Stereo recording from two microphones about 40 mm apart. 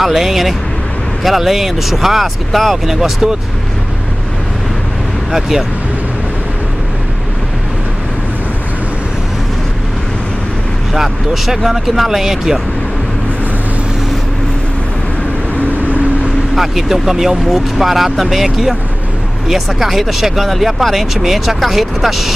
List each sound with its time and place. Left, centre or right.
0.0 s speech: centre
2.9 s speech: centre
5.3 s speech: centre
10.9 s speech: centre
16.5 s speech: centre